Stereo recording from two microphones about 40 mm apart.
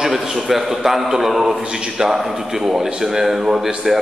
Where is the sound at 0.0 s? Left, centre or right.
Centre.